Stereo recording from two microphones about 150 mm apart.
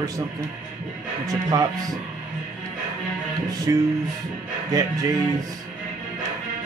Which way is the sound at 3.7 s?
25° right (ahead or behind).